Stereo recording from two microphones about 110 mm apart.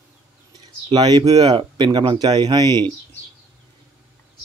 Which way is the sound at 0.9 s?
40° right (ahead or behind).